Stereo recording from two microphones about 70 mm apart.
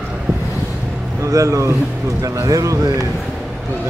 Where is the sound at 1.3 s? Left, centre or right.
Right.